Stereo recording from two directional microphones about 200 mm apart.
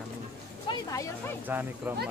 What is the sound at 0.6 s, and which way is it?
Speech, 15° left (ahead or behind).